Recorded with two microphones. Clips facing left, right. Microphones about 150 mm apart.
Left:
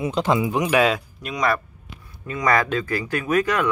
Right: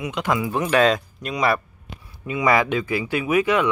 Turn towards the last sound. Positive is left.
turn(degrees=-10)  # may be behind; listen again after turning